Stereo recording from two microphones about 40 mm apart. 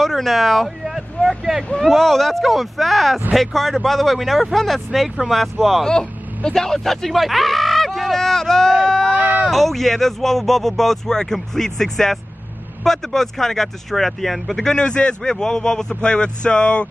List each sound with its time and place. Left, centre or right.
0.0 s speech: centre
5.9 s speech: centre
9.1 s speech: right
9.5 s speech: centre
14.8 s a man's voice: left